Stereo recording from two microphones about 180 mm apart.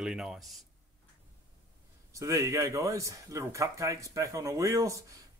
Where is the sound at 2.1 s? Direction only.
15° right (ahead or behind).